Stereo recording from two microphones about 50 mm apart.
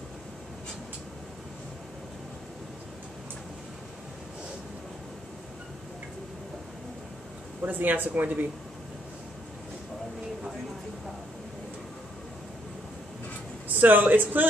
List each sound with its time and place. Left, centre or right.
7.6 s speech: right
13.7 s speech: right